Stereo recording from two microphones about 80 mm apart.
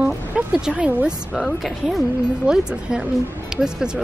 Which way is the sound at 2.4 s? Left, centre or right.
Centre.